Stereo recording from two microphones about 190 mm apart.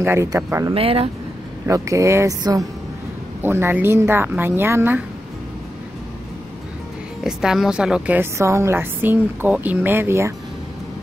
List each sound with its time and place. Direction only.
0.0 s a woman's voice: 15° right (ahead or behind)
0.7 s speech: 30° right (ahead or behind)
1.7 s a woman's voice: 15° right (ahead or behind)
7.2 s a woman's voice: centre (ahead or behind)